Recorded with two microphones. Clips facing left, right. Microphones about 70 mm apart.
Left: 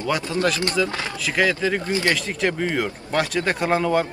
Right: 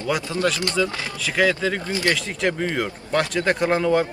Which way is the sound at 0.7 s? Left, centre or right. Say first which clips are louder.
Even; centre.